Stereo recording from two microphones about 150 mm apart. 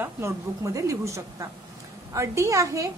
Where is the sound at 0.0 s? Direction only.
20° right (ahead or behind).